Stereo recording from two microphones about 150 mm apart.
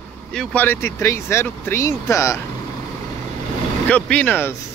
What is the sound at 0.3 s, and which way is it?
Speech, 5° left (ahead or behind).